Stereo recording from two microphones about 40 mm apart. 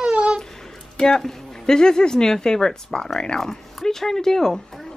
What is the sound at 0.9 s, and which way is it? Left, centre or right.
A woman's voice, centre.